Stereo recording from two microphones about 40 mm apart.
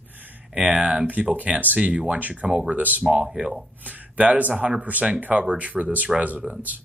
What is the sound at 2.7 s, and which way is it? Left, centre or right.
Speech, right.